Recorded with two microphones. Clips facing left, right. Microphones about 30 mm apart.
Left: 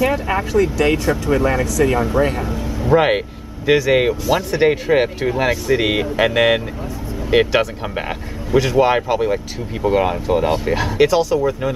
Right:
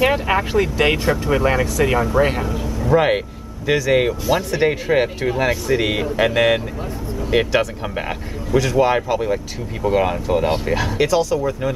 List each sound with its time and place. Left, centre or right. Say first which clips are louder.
0.0 s speech: right 1 dB; right
1.3 s speech: left 1 dB; centre
2.2 s speech: right 1 dB; centre
2.8 s speech: left 2 dB; centre